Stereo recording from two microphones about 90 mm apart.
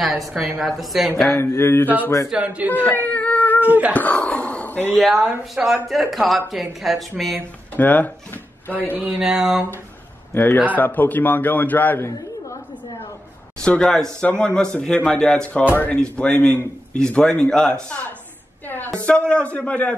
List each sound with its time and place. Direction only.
0.0 s speech: centre (ahead or behind)
1.3 s a man's voice: 30° left (ahead or behind)
2.2 s speech: 15° right (ahead or behind)
2.9 s cat: 20° left (ahead or behind)
3.4 s cat: 20° right (ahead or behind)
3.9 s speech: 15° left (ahead or behind)
4.9 s speech: centre (ahead or behind)
7.7 s speech: 20° left (ahead or behind)
9.2 s speech: 5° right (ahead or behind)
10.3 s a man's voice: 20° left (ahead or behind)
13.6 s a man's voice: 10° left (ahead or behind)
15.7 s a man's voice: 20° left (ahead or behind)
18.9 s a man's voice: 15° left (ahead or behind)